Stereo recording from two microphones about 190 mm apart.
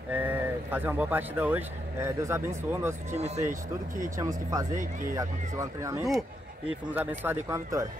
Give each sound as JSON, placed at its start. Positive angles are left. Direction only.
{"t": 0.1, "sound": "speech", "side_deg": -10}
{"t": 3.2, "sound": "speech", "side_deg": -35}
{"t": 4.2, "sound": "speech", "side_deg": -15}